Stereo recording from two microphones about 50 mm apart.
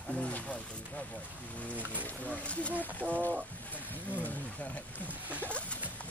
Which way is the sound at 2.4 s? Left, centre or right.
Left.